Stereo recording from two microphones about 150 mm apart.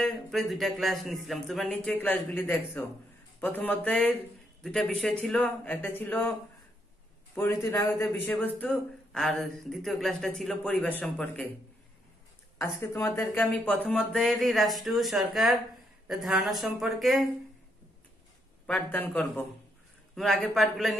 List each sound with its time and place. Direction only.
0.0 s speech: centre (ahead or behind)
1.7 s a man's voice: 10° left (ahead or behind)
7.6 s a man's voice: 15° left (ahead or behind)
12.8 s speech: 15° left (ahead or behind); by 17.2 s centre (ahead or behind)
18.7 s a man's voice: 10° left (ahead or behind)
20.2 s speech: centre (ahead or behind)